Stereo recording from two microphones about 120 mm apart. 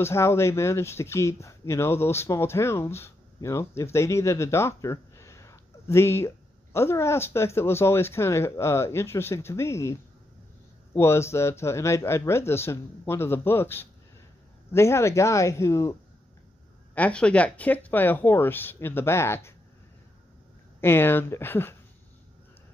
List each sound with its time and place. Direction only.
0.0 s speech: 20° left (ahead or behind)
11.0 s speech: 20° left (ahead or behind)
16.9 s speech: 10° left (ahead or behind)
20.8 s speech: 20° left (ahead or behind)